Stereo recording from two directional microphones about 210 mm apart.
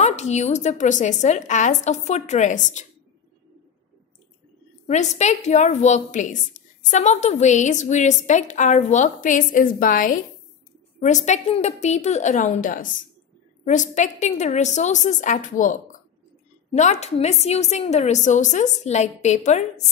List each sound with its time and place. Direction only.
0.0 s a woman's voice: 30° left (ahead or behind)
4.8 s a woman's voice: 35° left (ahead or behind)